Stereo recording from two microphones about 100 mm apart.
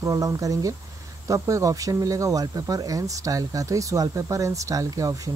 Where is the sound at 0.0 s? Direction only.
35° right (ahead or behind).